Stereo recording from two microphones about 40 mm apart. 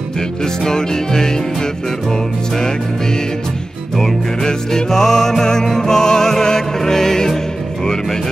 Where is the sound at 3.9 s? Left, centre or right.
Centre.